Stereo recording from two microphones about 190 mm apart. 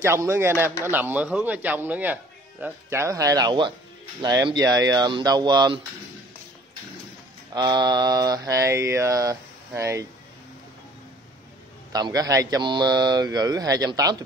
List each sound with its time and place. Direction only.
0.0 s mantra: 15° right (ahead or behind)
4.2 s speech: 20° right (ahead or behind)
7.5 s mantra: 20° right (ahead or behind)
11.9 s speech: 20° right (ahead or behind)